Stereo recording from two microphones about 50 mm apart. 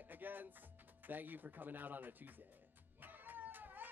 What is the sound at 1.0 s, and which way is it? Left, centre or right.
Speech, right.